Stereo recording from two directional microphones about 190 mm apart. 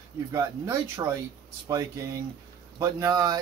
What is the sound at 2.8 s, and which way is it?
Speech, 20° right (ahead or behind).